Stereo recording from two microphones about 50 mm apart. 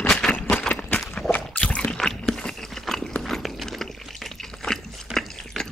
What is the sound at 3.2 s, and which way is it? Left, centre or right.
Liquid, centre.